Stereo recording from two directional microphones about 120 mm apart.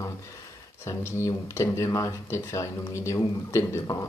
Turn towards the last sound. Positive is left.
turn(degrees=25)  # may be behind; listen again after turning